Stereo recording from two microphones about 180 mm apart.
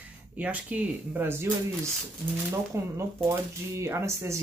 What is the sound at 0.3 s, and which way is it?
Speech, 10° right (ahead or behind).